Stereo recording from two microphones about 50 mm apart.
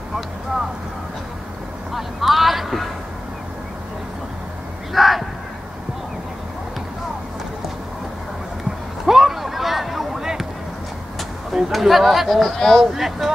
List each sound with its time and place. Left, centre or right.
2.0 s speech: centre
4.9 s crow: centre
9.0 s a sound: centre
11.5 s speech: centre
12.9 s speech: centre